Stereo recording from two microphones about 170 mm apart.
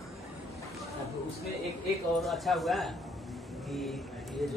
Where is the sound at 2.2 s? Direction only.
Centre (ahead or behind).